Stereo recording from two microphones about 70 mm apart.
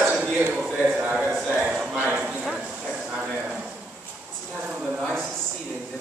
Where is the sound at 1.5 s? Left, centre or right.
Centre.